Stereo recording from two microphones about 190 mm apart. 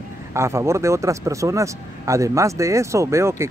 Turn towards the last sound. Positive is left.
turn(degrees=-15)  # may be behind; listen again after turning